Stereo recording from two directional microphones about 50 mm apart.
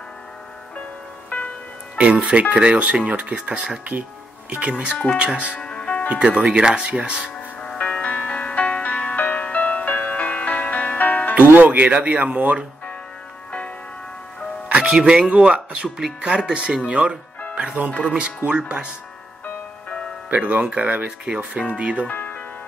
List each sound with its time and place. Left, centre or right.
2.0 s speech: right
5.6 s music: centre
6.0 s speech: right
7.6 s music: left
11.5 s speech: right
14.7 s speech: centre
16.0 s speech: centre
19.4 s music: left
20.2 s speech: right
22.0 s music: left